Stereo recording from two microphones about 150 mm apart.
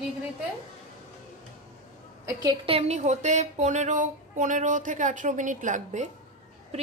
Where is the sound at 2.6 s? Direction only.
45° right (ahead or behind).